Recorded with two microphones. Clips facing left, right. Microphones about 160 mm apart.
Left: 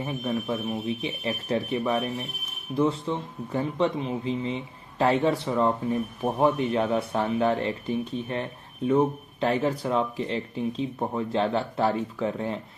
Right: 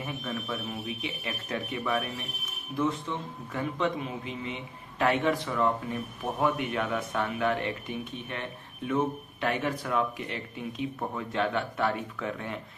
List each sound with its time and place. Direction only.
0.0 s speech: 30° left (ahead or behind)